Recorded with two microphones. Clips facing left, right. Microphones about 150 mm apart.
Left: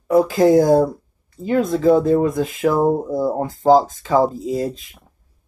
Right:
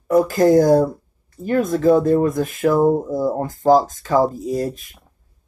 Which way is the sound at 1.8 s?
20° left (ahead or behind).